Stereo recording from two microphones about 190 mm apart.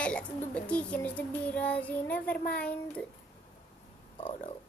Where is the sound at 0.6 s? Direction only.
5° left (ahead or behind).